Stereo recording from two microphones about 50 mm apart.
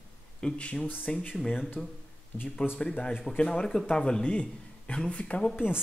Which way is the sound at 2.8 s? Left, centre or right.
Left.